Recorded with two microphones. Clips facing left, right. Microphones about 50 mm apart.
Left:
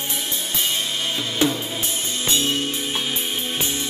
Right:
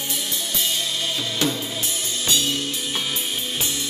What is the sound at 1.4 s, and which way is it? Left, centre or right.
Music, left.